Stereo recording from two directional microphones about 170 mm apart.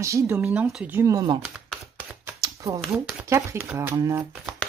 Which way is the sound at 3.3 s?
15° right (ahead or behind).